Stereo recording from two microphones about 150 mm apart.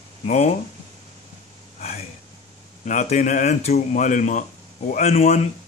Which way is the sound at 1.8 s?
45° left (ahead or behind).